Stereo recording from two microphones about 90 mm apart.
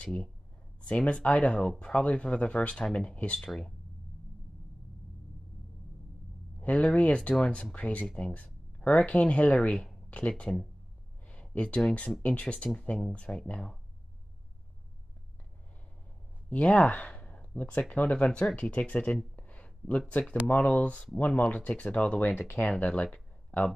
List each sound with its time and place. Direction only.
0.0 s speech: 10° left (ahead or behind)
6.6 s speech: 15° left (ahead or behind)
16.4 s speech: 15° left (ahead or behind)
19.3 s a sound: 15° left (ahead or behind)
20.4 s speech: 20° left (ahead or behind)
23.1 s a sound: 15° left (ahead or behind)